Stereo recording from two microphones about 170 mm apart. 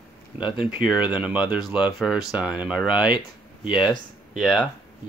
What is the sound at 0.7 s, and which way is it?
Speech, 5° right (ahead or behind).